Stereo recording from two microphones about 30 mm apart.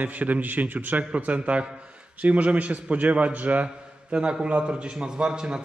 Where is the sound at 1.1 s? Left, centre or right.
Right.